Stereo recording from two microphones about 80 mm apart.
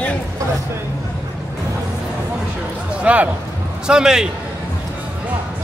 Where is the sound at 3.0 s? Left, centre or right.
Centre.